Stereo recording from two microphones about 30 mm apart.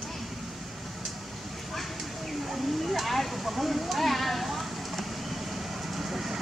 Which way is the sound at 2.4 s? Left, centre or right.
Centre.